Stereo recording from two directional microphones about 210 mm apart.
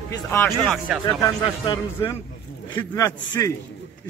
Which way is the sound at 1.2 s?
15° left (ahead or behind).